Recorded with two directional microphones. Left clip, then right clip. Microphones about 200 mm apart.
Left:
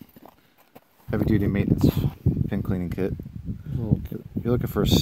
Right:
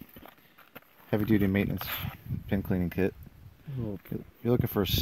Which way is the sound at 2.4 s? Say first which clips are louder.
Left 2 dB; centre (ahead or behind).